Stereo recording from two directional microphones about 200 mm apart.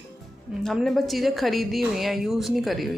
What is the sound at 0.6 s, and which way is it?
A woman's voice, centre (ahead or behind).